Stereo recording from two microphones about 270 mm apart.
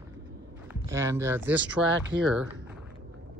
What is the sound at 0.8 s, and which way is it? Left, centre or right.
Speech, centre.